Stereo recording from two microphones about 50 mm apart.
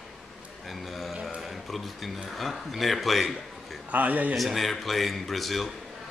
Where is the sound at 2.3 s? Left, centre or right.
Centre.